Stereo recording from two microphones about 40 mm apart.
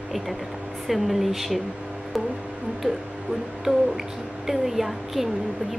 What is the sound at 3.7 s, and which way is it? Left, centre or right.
Music, right.